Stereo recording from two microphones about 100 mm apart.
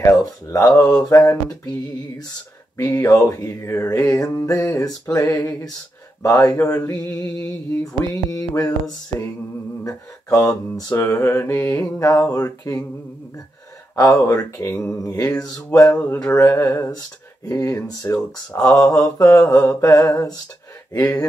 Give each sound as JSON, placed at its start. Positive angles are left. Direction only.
{"t": 0.0, "sound": "mantra", "side_deg": 35}
{"t": 2.8, "sound": "mantra", "side_deg": 35}
{"t": 11.0, "sound": "mantra", "side_deg": 25}
{"t": 13.9, "sound": "mantra", "side_deg": 30}
{"t": 15.9, "sound": "speech", "side_deg": 15}
{"t": 16.3, "sound": "mantra", "side_deg": 35}